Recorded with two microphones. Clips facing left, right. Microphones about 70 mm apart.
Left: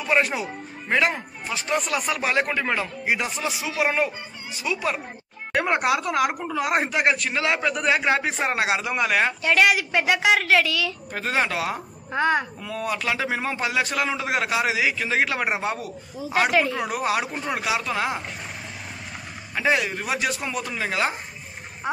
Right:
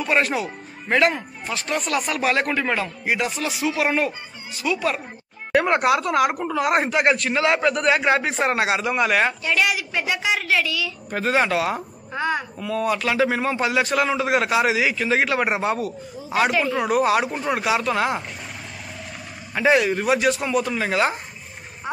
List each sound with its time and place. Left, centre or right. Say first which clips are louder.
0.0 s a man's voice: right 1 dB; centre
9.4 s a woman's voice: left 3 dB; left
11.1 s a man's voice: right 6 dB; centre
12.1 s a woman's voice: left 3 dB; left
12.5 s a man's voice: right 5 dB; centre
19.5 s a man's voice: right 5 dB; centre